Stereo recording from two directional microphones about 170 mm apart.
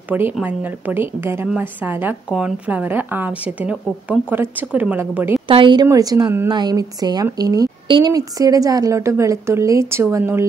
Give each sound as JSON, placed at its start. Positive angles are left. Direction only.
{"t": 0.1, "sound": "a woman's voice", "side_deg": -10}
{"t": 5.5, "sound": "a woman's voice", "side_deg": -30}